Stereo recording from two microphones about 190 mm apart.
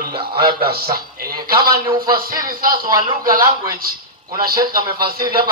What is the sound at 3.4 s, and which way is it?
Speech, 20° right (ahead or behind).